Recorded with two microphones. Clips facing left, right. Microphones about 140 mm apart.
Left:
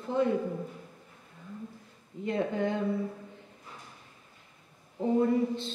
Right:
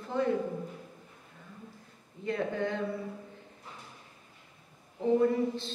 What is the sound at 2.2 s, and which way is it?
Speech, 20° left (ahead or behind).